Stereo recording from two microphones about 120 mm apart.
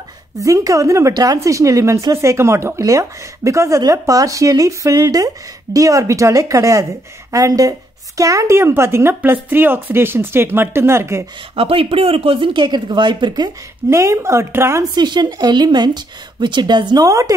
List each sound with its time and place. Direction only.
0.4 s speech: 25° right (ahead or behind)
11.5 s speech: 50° right (ahead or behind)
13.8 s speech: 25° right (ahead or behind)
15.0 s speech: 35° right (ahead or behind)